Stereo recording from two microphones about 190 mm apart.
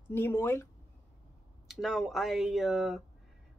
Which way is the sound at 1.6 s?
Centre (ahead or behind).